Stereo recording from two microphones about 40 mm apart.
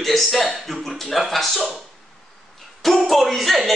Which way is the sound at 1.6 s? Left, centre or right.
Centre.